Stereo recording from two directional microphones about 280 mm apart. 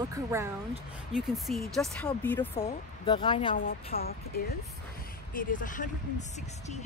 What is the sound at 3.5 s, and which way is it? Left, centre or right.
Speech, left.